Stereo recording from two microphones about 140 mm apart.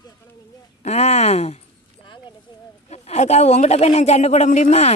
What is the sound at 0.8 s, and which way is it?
Speech, 50° left (ahead or behind).